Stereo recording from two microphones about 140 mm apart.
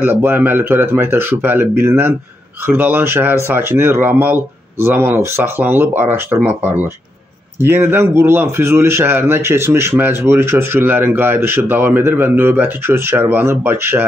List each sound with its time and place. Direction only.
0.0 s speech: 15° right (ahead or behind)